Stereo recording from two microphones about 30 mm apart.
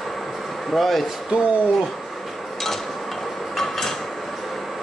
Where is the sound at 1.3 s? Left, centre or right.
Right.